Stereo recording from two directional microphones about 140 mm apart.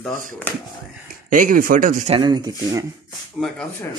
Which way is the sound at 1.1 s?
75° right (ahead or behind).